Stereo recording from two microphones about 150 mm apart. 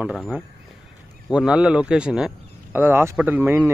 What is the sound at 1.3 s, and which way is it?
Speech, 5° right (ahead or behind).